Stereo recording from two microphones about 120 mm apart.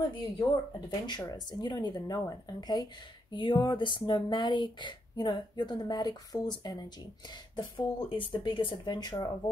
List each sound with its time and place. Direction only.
0.0 s speech: 40° left (ahead or behind)